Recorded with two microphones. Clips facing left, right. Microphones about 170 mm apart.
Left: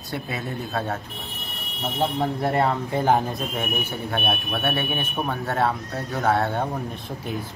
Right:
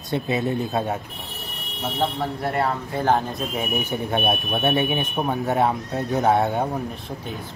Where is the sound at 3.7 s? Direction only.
15° right (ahead or behind).